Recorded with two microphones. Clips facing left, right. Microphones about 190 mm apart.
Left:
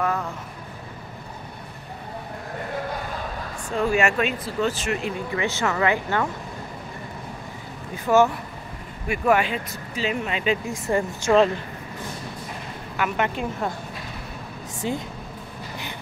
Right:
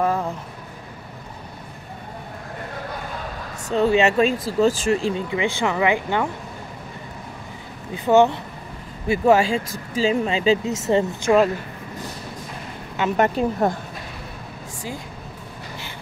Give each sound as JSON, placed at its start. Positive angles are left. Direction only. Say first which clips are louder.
{"t": 0.0, "sound": "speech", "louder": "right 4 dB", "side_deg": -30}
{"t": 3.7, "sound": "speech", "louder": "right 4 dB", "side_deg": -25}
{"t": 5.3, "sound": "speech", "louder": "right 2 dB", "side_deg": -15}
{"t": 7.9, "sound": "speech", "louder": "right 3 dB", "side_deg": -15}
{"t": 13.1, "sound": "speech", "louder": "right 10 dB", "side_deg": -40}